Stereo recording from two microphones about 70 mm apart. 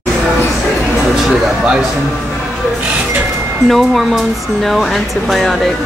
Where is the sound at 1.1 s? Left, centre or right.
Centre.